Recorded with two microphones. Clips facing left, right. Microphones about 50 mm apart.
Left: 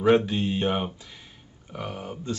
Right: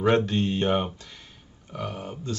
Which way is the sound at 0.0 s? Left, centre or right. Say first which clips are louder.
Left 1 dB; centre.